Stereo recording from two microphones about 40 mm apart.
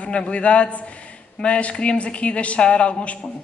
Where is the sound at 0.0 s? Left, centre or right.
Left.